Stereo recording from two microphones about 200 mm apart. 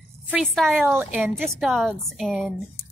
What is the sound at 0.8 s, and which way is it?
Speech, 10° right (ahead or behind).